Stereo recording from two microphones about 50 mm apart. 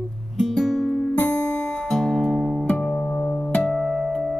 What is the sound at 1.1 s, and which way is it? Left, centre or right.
Music, left.